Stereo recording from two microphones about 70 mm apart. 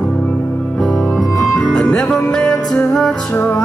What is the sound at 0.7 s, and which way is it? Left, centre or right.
Music, centre.